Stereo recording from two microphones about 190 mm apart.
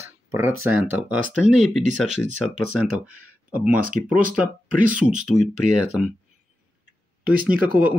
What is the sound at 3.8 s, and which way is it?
Speech, 45° right (ahead or behind).